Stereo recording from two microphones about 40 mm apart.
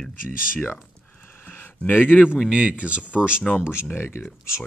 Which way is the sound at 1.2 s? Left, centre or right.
Left.